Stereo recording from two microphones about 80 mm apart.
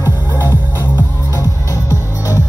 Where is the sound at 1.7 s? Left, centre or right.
Left.